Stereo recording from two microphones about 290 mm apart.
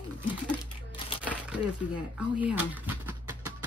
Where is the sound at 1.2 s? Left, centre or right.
Centre.